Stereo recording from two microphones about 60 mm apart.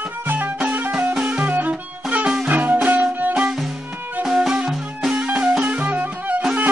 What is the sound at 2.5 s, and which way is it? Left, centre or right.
Music, right.